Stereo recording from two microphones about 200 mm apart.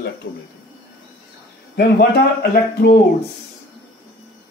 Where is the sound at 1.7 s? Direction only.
55° left (ahead or behind).